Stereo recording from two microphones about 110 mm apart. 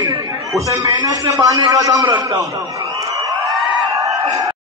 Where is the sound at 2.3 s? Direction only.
30° right (ahead or behind).